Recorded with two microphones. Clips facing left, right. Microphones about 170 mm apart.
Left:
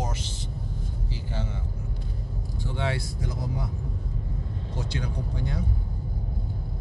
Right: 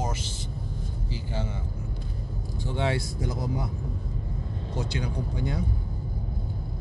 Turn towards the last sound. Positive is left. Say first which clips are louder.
# right 2 dB
turn(degrees=-15)  # may be behind; listen again after turning